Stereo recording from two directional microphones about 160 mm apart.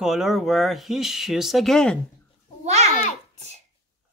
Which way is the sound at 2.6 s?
45° right (ahead or behind).